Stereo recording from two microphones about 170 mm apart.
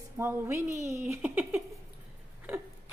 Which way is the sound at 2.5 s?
10° right (ahead or behind).